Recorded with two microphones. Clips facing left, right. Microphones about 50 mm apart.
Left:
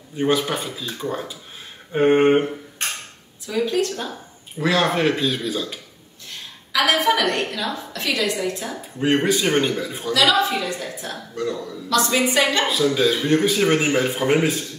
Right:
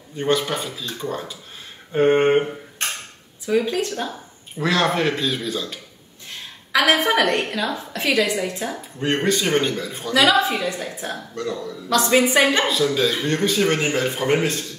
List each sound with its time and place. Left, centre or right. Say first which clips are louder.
0.1 s speech: left 1 dB; centre
3.4 s a woman's voice: right 3 dB; right
3.7 s a woman's voice: left 2 dB; centre
4.6 s speech: even; centre
6.7 s a woman's voice: right 1 dB; right
9.0 s speech: left 2 dB; centre
10.6 s a woman's voice: right 1 dB; centre
11.3 s speech: left 4 dB; centre
12.1 s a woman's voice: right 5 dB; right
12.6 s speech: left 1 dB; centre